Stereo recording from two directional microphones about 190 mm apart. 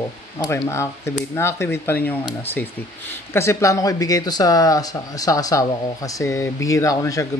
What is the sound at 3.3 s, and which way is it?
Speech, 15° left (ahead or behind).